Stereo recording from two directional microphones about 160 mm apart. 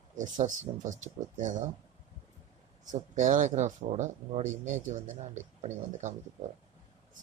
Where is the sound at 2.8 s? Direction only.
50° right (ahead or behind).